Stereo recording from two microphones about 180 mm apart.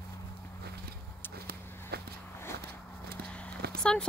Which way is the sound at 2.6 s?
60° right (ahead or behind).